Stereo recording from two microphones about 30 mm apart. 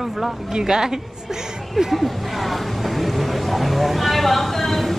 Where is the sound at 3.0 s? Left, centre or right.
Centre.